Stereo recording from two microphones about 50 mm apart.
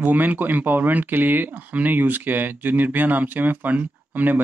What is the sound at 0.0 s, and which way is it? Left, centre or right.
Speech, right.